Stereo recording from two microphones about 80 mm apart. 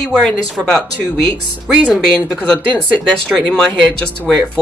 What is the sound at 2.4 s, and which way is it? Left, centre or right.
Speech, centre.